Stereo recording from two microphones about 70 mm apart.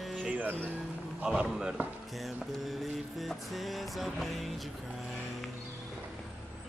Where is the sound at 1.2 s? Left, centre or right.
Centre.